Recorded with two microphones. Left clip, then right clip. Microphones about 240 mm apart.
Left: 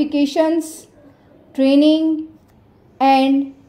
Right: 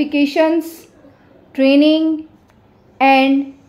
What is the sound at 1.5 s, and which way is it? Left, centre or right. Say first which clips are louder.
A woman's voice: right 2 dB; centre.